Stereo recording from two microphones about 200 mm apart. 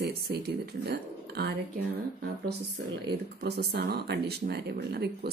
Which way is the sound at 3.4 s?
55° right (ahead or behind).